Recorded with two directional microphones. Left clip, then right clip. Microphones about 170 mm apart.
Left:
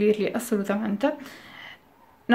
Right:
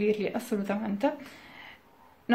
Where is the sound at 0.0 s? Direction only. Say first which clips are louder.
Left 5 dB; 20° left (ahead or behind).